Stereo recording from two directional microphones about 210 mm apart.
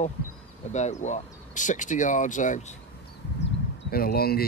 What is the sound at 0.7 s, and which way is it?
Speech, 35° left (ahead or behind).